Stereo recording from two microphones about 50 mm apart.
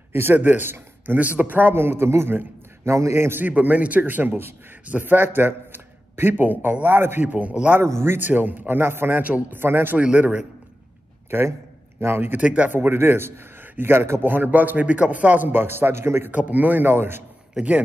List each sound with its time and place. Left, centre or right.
0.1 s a man's voice: right
2.8 s a man's voice: right
3.4 s a man's voice: right
7.2 s a man's voice: right
7.8 s a man's voice: right
8.2 s speech: right
9.2 s a man's voice: right
9.6 s speech: right
9.9 s a man's voice: right
11.2 s a man's voice: right
12.4 s a man's voice: right
12.9 s a man's voice: right
16.3 s a man's voice: right
17.6 s a man's voice: right